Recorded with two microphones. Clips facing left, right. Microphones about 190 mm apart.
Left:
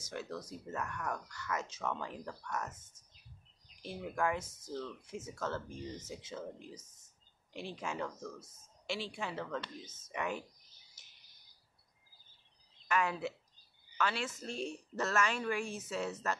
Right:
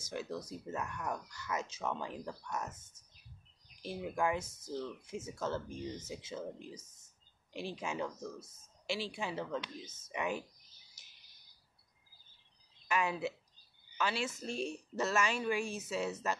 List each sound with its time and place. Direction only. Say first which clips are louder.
0.1 s speech: right 2 dB; 15° right (ahead or behind)
3.8 s speech: right 1 dB; 15° right (ahead or behind)
7.7 s speech: even; 15° right (ahead or behind)
12.8 s speech: even; 15° right (ahead or behind)